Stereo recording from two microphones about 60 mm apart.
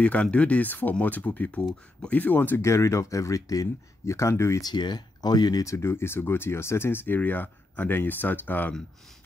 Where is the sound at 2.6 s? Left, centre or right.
Left.